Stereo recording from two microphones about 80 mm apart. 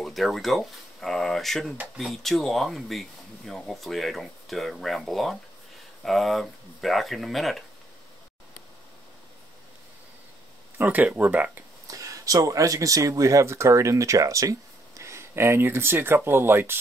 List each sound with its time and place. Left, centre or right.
0.0 s speech: centre
11.1 s speech: centre
11.9 s speech: right